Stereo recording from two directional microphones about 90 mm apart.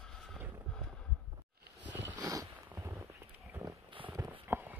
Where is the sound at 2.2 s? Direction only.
35° right (ahead or behind).